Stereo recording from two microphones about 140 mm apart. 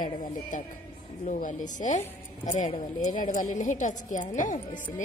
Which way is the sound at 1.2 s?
60° left (ahead or behind).